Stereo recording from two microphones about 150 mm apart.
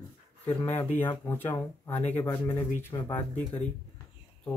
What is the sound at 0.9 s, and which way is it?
Speech, 15° left (ahead or behind).